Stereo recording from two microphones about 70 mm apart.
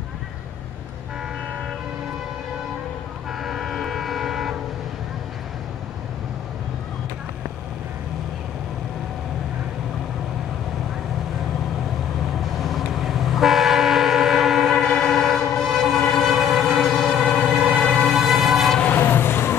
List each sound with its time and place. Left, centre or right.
3.3 s train: centre
12.5 s train: centre
18.9 s toot: left